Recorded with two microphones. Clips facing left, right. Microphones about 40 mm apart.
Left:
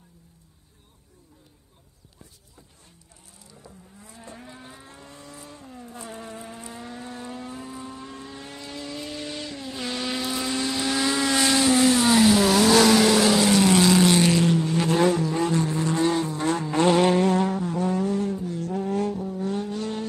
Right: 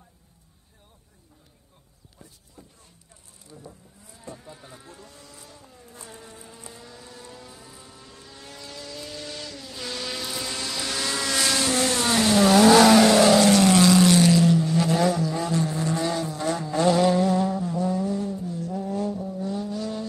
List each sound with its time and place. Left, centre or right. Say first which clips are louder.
4.0 s vehicle: right 1 dB; left
6.1 s vehicle: left 7 dB; left; by 14.1 s centre
14.1 s vehicle: right 2 dB; left
19.2 s vehicle: left 2 dB; left